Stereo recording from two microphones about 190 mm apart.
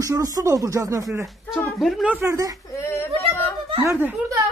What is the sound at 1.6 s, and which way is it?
Speech, centre (ahead or behind).